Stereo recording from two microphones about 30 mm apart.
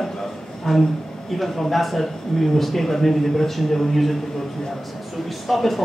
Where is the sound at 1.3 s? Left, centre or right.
Centre.